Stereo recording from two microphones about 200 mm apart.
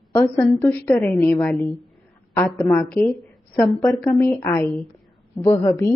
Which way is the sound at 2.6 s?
10° left (ahead or behind).